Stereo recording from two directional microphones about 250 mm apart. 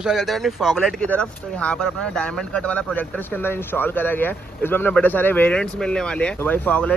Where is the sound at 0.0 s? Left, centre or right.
Centre.